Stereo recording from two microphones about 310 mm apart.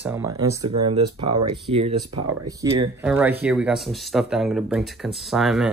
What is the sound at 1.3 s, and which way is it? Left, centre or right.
Speech, right.